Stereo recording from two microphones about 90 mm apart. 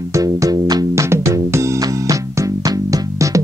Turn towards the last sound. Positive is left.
turn(degrees=-40)  # may be behind; listen again after turning